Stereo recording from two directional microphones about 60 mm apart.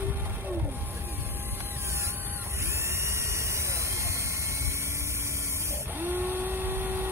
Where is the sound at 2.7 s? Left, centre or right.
Right.